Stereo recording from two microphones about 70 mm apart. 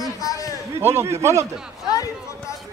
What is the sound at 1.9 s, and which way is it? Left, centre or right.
Speech, left.